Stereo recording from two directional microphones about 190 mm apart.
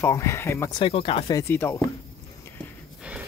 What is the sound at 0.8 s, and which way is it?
Speech, 30° left (ahead or behind).